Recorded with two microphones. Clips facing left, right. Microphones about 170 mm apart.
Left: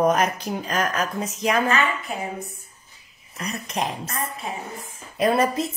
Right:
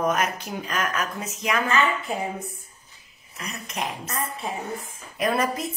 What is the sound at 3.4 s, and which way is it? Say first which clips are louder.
Speech: left 4 dB; 35° left (ahead or behind).